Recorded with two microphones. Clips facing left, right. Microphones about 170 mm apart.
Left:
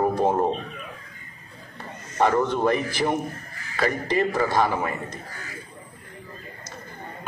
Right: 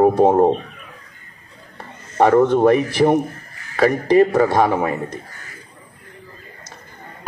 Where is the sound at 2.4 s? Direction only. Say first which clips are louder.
Right 8 dB; 60° right (ahead or behind).